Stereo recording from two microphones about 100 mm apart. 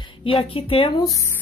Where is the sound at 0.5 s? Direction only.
65° left (ahead or behind).